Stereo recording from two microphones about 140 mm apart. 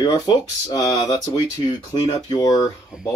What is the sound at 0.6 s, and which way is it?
Speech, 25° left (ahead or behind).